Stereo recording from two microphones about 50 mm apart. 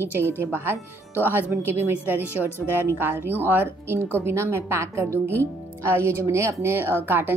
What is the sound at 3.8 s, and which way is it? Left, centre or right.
A woman's voice, right.